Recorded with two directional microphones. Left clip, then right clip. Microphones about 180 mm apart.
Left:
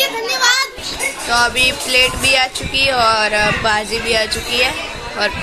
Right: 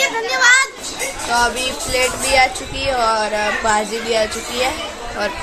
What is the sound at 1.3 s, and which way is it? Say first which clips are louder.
Music: left 3 dB; centre (ahead or behind).